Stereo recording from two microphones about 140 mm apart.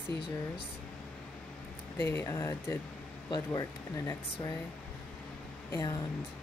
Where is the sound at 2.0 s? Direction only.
20° left (ahead or behind).